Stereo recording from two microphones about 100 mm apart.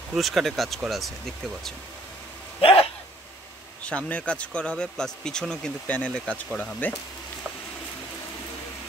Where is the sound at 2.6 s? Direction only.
70° left (ahead or behind).